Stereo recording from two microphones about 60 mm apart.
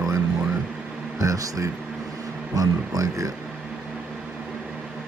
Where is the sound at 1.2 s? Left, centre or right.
Right.